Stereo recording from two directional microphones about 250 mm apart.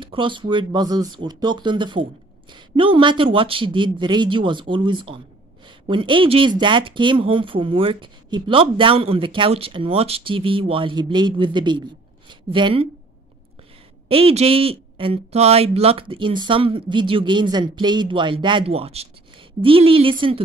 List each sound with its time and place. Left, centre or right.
0.0 s speech: centre
14.0 s speech: right